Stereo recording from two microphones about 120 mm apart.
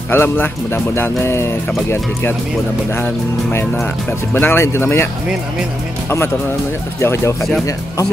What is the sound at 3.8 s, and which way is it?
Speech, 15° left (ahead or behind).